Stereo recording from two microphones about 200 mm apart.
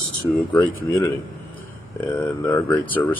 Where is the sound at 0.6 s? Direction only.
15° left (ahead or behind).